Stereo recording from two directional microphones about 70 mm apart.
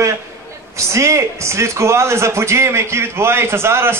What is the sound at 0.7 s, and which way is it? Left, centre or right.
A man's voice, right.